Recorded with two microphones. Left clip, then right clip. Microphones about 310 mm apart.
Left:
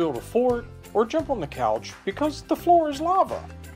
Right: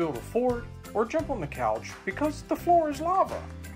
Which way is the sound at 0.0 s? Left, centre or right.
Left.